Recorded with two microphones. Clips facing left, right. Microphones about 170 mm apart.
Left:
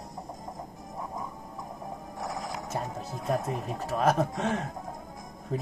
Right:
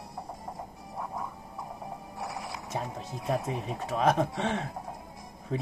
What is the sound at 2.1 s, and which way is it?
Music, 40° left (ahead or behind).